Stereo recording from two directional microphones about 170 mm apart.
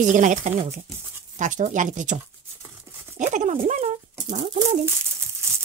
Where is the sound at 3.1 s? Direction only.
45° right (ahead or behind).